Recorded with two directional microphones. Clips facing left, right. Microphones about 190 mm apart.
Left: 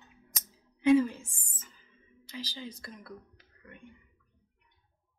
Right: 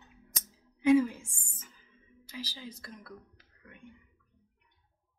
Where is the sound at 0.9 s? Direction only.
10° right (ahead or behind).